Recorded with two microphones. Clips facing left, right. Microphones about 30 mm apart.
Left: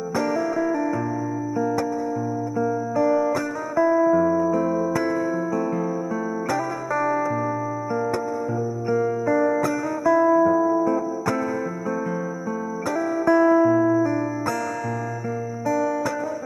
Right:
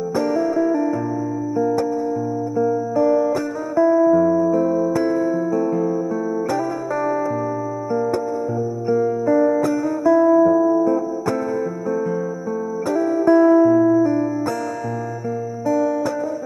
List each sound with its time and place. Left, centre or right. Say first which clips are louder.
0.1 s music: right 3 dB; centre
3.0 s music: right 3 dB; centre
8.8 s music: right 4 dB; centre
12.9 s music: right 4 dB; centre
13.7 s music: right 4 dB; centre